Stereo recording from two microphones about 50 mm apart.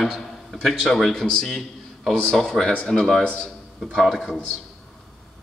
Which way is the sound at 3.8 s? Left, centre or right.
Centre.